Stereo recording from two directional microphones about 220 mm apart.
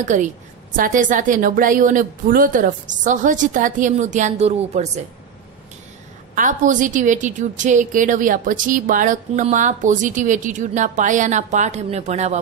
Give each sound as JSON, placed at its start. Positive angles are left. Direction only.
{"t": 0.0, "sound": "a woman's voice", "side_deg": -35}
{"t": 6.3, "sound": "a woman's voice", "side_deg": -35}